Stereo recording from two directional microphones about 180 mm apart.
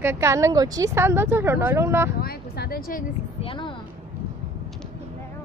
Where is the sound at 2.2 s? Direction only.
60° left (ahead or behind).